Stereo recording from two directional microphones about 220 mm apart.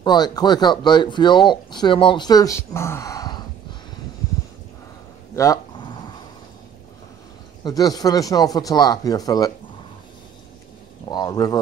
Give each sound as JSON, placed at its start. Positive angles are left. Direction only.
{"t": 0.0, "sound": "speech", "side_deg": 20}
{"t": 5.3, "sound": "a sound", "side_deg": 15}
{"t": 7.6, "sound": "speech", "side_deg": 15}
{"t": 11.1, "sound": "speech", "side_deg": 20}